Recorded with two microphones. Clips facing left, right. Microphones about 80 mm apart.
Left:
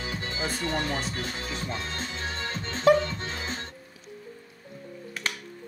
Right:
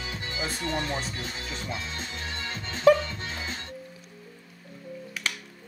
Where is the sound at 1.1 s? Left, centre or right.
Left.